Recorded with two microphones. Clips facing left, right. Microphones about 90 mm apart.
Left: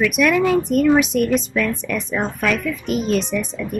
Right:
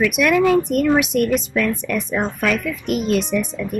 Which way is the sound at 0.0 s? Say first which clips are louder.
Right 1 dB; centre (ahead or behind).